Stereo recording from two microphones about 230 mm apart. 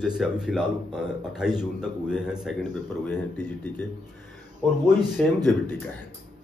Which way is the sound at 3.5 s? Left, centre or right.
Centre.